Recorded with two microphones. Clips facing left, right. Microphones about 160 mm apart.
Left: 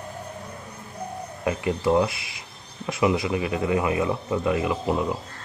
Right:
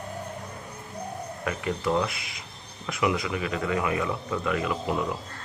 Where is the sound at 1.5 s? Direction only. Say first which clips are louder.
Left 5 dB; 20° left (ahead or behind).